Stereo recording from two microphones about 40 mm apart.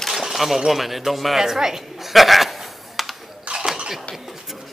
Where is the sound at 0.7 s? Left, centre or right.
Centre.